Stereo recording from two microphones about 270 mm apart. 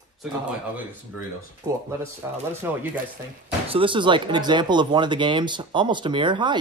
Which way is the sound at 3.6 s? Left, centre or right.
Centre.